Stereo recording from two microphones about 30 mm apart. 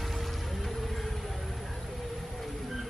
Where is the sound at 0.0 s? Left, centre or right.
Centre.